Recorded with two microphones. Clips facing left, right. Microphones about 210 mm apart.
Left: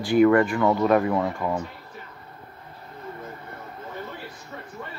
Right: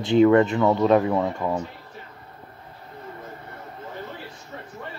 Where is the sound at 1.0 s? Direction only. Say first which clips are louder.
Right 1 dB; 10° right (ahead or behind).